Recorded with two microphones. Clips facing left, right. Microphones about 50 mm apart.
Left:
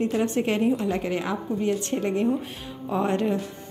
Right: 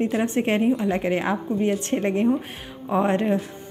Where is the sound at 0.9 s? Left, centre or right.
Right.